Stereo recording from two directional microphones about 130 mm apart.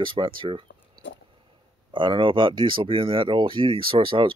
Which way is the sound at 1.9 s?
40° right (ahead or behind).